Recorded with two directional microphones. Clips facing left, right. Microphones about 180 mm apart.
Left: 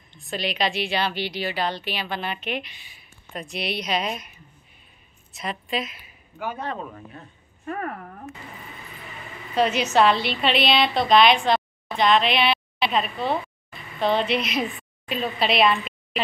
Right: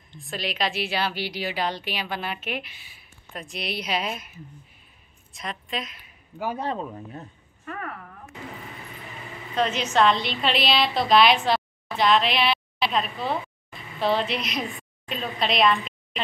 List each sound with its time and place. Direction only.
0.3 s a woman's voice: centre (ahead or behind)
6.3 s speech: 35° right (ahead or behind)
7.6 s a woman's voice: 35° left (ahead or behind)
9.6 s a woman's voice: 10° left (ahead or behind)